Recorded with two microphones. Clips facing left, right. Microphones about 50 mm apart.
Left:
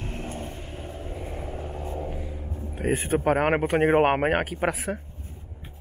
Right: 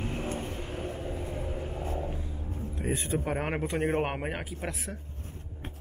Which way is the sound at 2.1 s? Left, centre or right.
Left.